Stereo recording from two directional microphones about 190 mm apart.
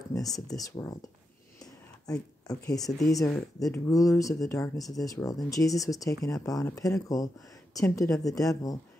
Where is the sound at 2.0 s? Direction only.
20° left (ahead or behind).